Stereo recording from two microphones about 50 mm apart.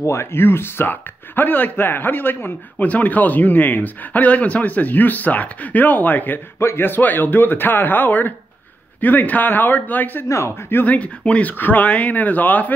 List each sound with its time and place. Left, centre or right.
0.0 s speech: left
10.2 s a man's voice: left
10.7 s speech: left
11.0 s speech: left